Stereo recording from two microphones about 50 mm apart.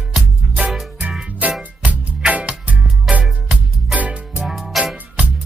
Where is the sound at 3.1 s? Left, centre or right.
Centre.